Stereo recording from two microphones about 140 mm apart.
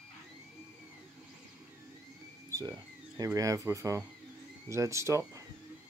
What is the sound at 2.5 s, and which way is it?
Speech, 25° right (ahead or behind).